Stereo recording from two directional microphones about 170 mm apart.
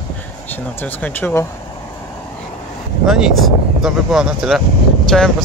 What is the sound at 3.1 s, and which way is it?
Speech, centre (ahead or behind).